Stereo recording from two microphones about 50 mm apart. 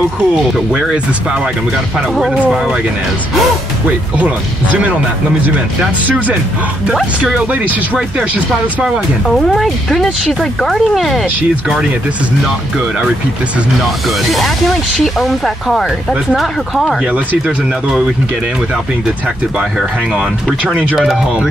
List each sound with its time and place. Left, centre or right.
0.7 s speech: centre
2.0 s speech: centre
4.2 s speech: right
6.0 s speech: right
9.3 s speech: centre
14.0 s speech: centre
17.1 s speech: right